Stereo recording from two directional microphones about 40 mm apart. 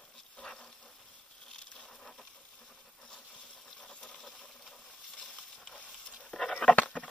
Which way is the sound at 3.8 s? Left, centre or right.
Left.